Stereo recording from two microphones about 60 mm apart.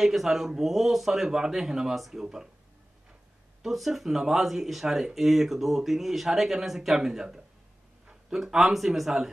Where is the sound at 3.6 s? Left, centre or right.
Centre.